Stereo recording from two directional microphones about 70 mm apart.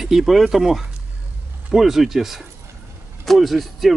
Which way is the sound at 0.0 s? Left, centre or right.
Centre.